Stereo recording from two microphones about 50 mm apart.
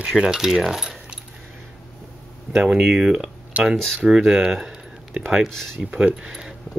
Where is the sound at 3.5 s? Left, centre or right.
Right.